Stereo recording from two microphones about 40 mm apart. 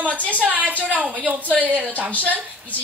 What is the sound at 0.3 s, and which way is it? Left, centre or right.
A child's voice, right.